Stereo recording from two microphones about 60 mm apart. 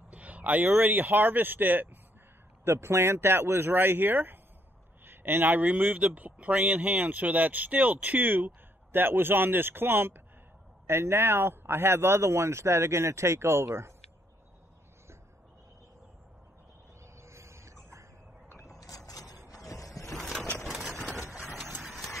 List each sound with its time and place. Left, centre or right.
0.1 s speech: right
2.6 s speech: right
17.0 s bird: right
18.8 s vehicle: left
19.5 s a sound: left
20.6 s engine: centre
21.8 s horse: centre